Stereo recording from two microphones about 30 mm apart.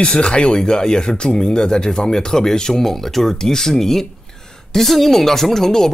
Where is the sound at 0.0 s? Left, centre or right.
Left.